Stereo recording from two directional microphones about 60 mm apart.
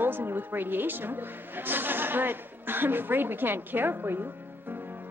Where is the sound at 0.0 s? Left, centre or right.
Right.